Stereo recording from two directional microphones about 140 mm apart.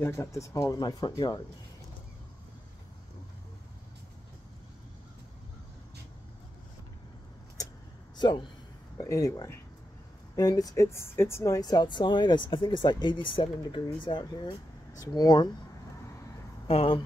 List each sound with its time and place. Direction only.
0.0 s speech: 20° left (ahead or behind)
8.2 s speech: 30° left (ahead or behind)
16.6 s speech: 40° left (ahead or behind)